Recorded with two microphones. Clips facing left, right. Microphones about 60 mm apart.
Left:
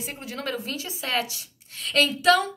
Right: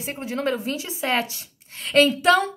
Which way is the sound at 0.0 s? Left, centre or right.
Right.